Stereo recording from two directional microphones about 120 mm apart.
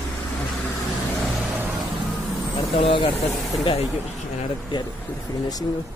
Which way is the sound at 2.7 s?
50° left (ahead or behind).